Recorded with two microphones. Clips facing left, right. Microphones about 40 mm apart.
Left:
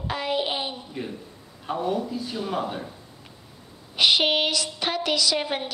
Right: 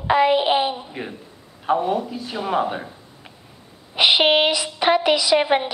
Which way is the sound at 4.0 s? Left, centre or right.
Right.